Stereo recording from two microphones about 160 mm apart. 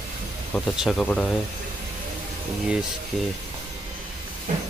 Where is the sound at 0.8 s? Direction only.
Centre (ahead or behind).